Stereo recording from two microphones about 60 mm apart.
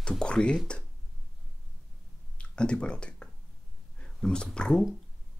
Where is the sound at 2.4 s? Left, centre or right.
Centre.